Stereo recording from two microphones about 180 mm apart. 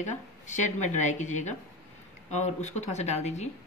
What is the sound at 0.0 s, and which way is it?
Speech, 40° left (ahead or behind).